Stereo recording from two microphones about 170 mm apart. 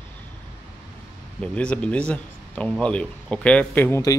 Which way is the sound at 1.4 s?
5° left (ahead or behind).